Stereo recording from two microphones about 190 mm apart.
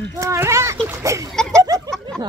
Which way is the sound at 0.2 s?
15° right (ahead or behind).